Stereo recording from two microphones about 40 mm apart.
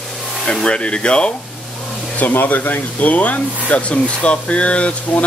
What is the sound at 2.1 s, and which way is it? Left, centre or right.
Speech, left.